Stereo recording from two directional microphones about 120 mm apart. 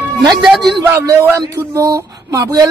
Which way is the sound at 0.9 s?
20° right (ahead or behind).